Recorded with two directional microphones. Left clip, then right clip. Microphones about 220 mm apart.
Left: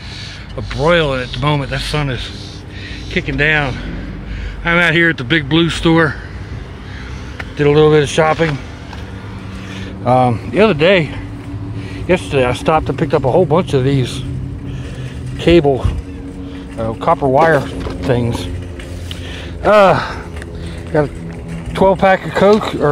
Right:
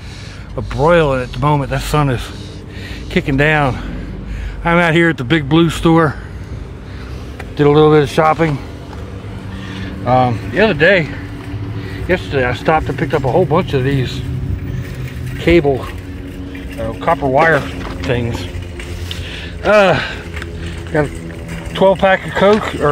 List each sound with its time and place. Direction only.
0.6 s speech: 10° right (ahead or behind)
7.5 s speech: 10° right (ahead or behind)
9.8 s speech: 20° left (ahead or behind)
15.3 s speech: 10° left (ahead or behind)
16.8 s speech: 20° left (ahead or behind)
19.6 s speech: 10° left (ahead or behind)
21.7 s speech: 20° left (ahead or behind)